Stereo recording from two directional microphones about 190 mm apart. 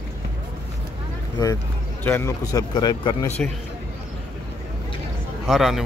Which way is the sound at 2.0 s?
10° left (ahead or behind).